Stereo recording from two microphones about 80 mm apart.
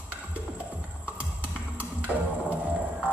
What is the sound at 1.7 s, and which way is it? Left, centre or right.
Music, centre.